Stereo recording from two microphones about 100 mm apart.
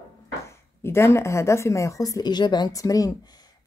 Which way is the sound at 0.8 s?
25° left (ahead or behind).